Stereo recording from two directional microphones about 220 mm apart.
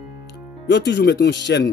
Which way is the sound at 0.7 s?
50° left (ahead or behind).